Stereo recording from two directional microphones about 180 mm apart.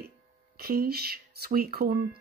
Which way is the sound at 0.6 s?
60° right (ahead or behind).